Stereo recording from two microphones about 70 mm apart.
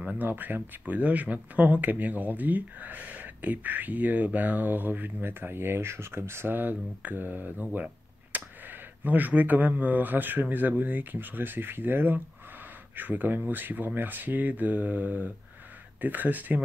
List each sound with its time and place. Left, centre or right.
0.2 s speech: right